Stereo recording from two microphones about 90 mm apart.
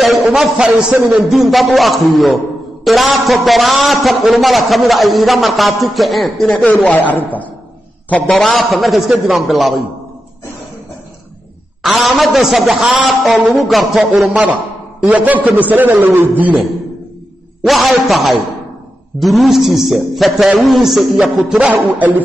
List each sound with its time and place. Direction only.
0.0 s a man's voice: centre (ahead or behind)
6.7 s speech: 15° left (ahead or behind)
8.4 s a man's voice: centre (ahead or behind)
11.8 s a man's voice: centre (ahead or behind)
15.0 s a man's voice: 15° right (ahead or behind)
17.6 s a man's voice: centre (ahead or behind)
21.5 s a man's voice: 15° right (ahead or behind)